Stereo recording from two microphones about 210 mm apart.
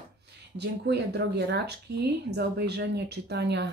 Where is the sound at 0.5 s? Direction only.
55° right (ahead or behind).